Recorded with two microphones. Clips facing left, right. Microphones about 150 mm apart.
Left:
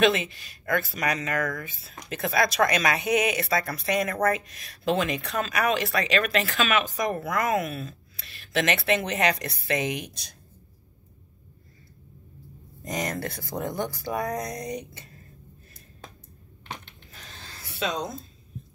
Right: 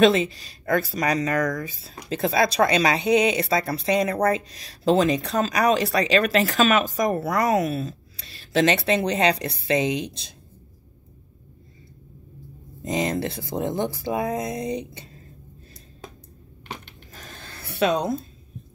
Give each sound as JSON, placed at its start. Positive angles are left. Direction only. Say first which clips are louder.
{"t": 0.0, "sound": "speech", "louder": "right 5 dB", "side_deg": -30}
{"t": 12.8, "sound": "speech", "louder": "right 6 dB", "side_deg": -20}
{"t": 17.1, "sound": "a sound", "louder": "right 4 dB", "side_deg": -50}